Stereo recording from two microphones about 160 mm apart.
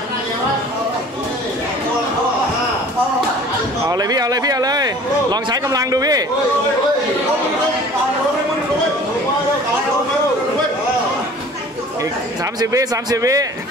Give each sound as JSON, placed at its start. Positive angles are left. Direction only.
{"t": 3.9, "sound": "speech", "side_deg": -25}
{"t": 12.5, "sound": "speech", "side_deg": -20}